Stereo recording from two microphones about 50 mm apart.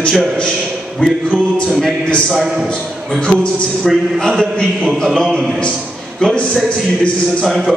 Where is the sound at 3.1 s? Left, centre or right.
Centre.